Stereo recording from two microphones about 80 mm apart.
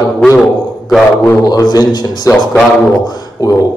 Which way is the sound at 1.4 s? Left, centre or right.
Left.